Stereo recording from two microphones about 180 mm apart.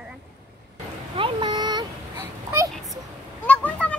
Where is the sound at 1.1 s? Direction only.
25° right (ahead or behind).